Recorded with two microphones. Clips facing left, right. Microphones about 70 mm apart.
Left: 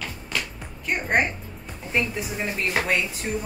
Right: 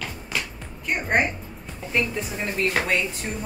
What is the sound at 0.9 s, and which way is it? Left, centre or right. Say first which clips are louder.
Speech: even; centre.